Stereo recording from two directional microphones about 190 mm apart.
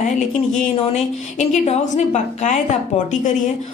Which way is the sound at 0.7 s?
30° left (ahead or behind).